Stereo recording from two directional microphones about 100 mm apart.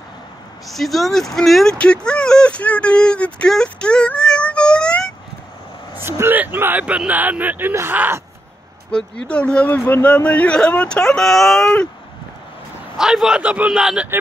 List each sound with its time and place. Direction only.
0.7 s speech: centre (ahead or behind)
5.9 s speech: 25° right (ahead or behind)
8.9 s speech: 5° left (ahead or behind)
12.9 s a man's voice: 5° right (ahead or behind)